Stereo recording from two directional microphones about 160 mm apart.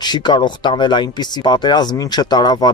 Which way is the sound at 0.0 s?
30° left (ahead or behind).